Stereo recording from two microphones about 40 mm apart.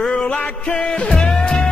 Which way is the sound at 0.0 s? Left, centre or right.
Left.